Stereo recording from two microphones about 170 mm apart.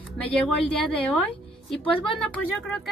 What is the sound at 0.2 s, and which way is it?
Speech, 10° left (ahead or behind).